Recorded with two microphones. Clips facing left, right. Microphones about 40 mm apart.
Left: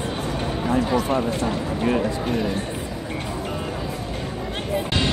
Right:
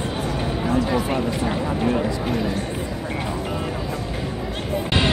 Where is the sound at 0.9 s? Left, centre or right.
Centre.